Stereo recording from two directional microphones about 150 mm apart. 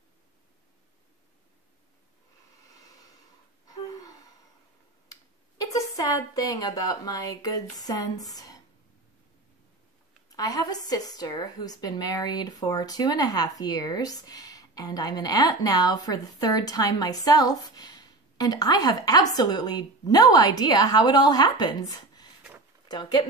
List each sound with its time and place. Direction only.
5.1 s speech: 25° left (ahead or behind)
10.3 s a woman's voice: 25° left (ahead or behind)